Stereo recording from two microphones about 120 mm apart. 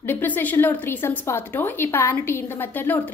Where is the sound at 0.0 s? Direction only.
15° left (ahead or behind).